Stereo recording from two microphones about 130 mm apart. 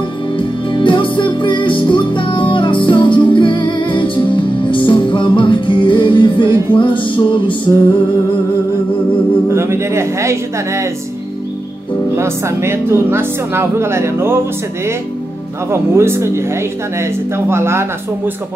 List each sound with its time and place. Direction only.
0.7 s music: 40° left (ahead or behind)
9.5 s speech: 20° right (ahead or behind)
12.2 s speech: 20° right (ahead or behind)
15.7 s speech: 20° right (ahead or behind)